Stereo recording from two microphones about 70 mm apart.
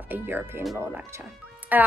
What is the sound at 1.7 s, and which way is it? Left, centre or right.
Speech, right.